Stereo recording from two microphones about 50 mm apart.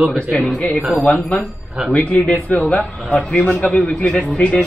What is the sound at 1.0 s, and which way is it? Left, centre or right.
Speech, left.